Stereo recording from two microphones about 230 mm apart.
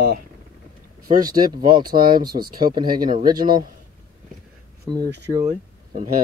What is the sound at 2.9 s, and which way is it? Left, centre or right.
Speech, right.